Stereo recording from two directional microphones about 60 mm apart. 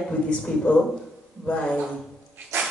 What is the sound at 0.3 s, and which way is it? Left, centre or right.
A woman's voice, centre.